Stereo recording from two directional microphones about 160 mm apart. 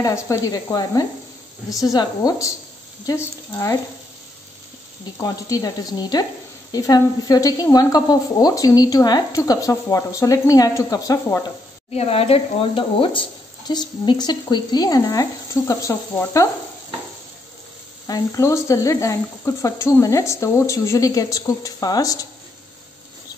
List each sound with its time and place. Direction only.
0.0 s speech: 20° left (ahead or behind)
5.2 s speech: 25° left (ahead or behind)
11.9 s speech: 40° left (ahead or behind); by 16.4 s 20° left (ahead or behind)
18.0 s speech: 20° left (ahead or behind)